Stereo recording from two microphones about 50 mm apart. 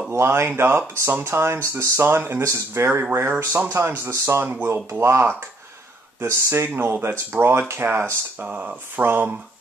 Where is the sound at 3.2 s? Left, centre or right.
Right.